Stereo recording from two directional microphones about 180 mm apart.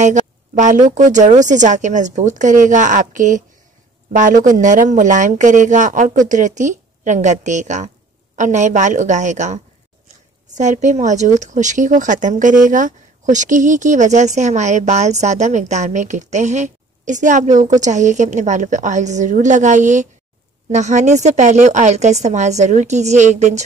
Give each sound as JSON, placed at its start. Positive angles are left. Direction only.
{"t": 0.0, "sound": "a sound", "side_deg": -40}
{"t": 0.8, "sound": "a woman's voice", "side_deg": -45}
{"t": 10.6, "sound": "a woman's voice", "side_deg": -40}